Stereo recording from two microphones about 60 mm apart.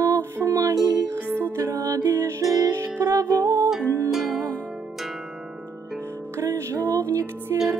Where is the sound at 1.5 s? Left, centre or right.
Right.